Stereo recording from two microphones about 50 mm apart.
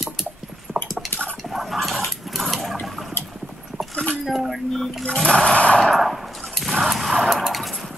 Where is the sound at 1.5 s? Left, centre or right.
Centre.